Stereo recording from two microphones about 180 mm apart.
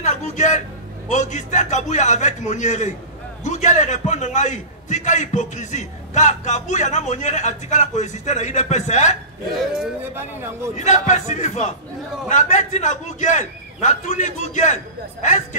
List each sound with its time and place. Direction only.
0.0 s a man's voice: 40° left (ahead or behind)
9.6 s speech: 5° right (ahead or behind)
10.7 s a man's voice: 40° left (ahead or behind)